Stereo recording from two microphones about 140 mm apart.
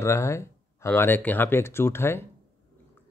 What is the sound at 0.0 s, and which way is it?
Speech, 20° left (ahead or behind).